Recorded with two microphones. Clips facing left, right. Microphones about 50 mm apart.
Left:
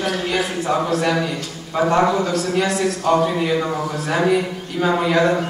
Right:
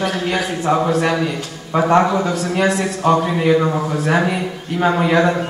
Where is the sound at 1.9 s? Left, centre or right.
Centre.